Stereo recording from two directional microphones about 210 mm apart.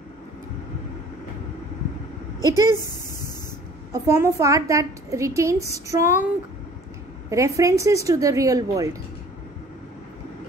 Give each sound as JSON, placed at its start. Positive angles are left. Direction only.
{"t": 2.4, "sound": "a woman's voice", "side_deg": -15}
{"t": 3.9, "sound": "a woman's voice", "side_deg": -15}
{"t": 7.2, "sound": "a woman's voice", "side_deg": -15}